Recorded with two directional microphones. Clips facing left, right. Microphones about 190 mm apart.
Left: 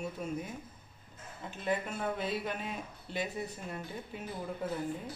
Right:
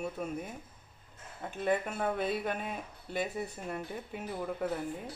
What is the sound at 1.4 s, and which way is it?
Speech, 55° right (ahead or behind).